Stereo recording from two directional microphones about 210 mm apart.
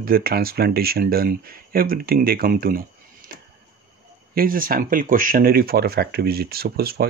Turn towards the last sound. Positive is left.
turn(degrees=-45)  # may be behind; listen again after turning